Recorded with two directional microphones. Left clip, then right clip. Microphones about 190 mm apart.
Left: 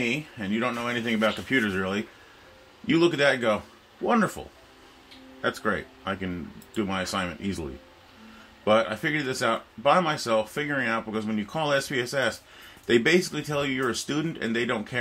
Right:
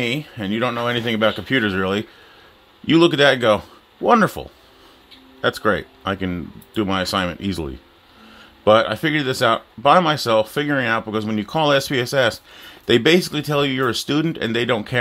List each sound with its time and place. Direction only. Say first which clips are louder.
0.0 s speech: right 5 dB; 55° right (ahead or behind)
8.6 s speech: right 8 dB; 55° right (ahead or behind)